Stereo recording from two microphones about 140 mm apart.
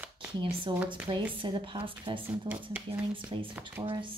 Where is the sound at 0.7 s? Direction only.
35° right (ahead or behind).